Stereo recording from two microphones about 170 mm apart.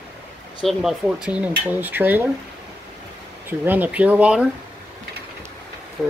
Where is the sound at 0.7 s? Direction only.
Centre (ahead or behind).